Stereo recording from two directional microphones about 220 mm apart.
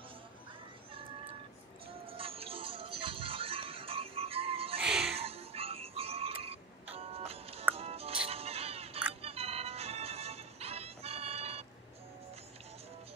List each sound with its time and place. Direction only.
2.1 s music: 25° right (ahead or behind)
4.8 s music: 5° right (ahead or behind)
5.2 s music: 25° right (ahead or behind)